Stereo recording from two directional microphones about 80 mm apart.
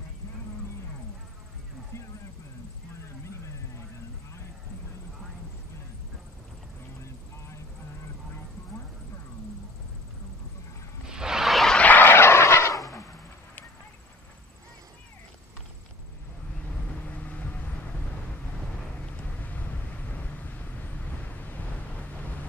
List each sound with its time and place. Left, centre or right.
11.1 s a sound: centre
11.7 s vehicle: left
17.2 s vehicle: centre
19.0 s vehicle: centre